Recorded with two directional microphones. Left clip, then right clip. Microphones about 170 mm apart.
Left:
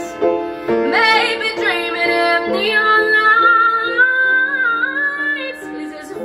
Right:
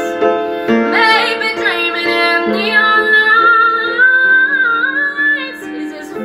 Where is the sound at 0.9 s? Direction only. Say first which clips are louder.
Right 2 dB; 10° right (ahead or behind).